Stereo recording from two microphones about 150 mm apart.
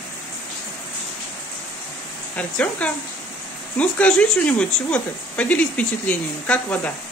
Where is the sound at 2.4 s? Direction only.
10° left (ahead or behind).